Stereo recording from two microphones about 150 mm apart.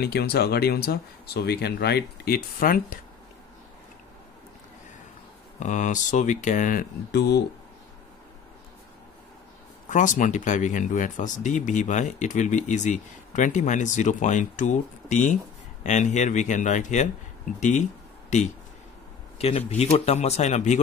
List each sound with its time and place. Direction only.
0.0 s speech: 90° left; by 3.0 s 70° left (ahead or behind)
5.6 s speech: 55° left (ahead or behind); by 7.4 s 90° left
9.8 s speech: 55° left (ahead or behind)
19.3 s speech: 40° left (ahead or behind)